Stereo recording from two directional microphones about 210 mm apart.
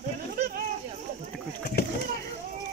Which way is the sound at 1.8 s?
50° left (ahead or behind).